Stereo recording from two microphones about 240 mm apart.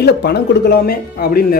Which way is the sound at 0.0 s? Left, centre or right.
Left.